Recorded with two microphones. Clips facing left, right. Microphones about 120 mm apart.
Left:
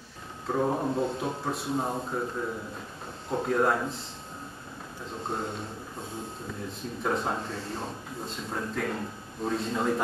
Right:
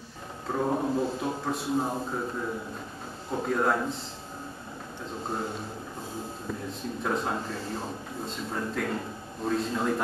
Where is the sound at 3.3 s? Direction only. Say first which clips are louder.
Left 1 dB; centre (ahead or behind).